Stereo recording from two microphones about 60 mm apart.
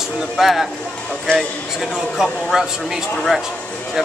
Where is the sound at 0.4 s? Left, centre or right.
Centre.